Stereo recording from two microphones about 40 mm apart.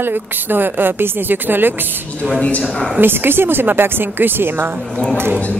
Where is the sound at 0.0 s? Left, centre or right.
Right.